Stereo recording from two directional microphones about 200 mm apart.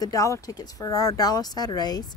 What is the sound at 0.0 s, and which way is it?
Speech, 15° left (ahead or behind).